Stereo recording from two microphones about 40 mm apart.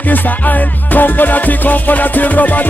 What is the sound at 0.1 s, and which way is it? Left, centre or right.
Music, left.